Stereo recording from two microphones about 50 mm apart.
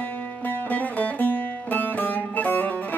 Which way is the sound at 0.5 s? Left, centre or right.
Left.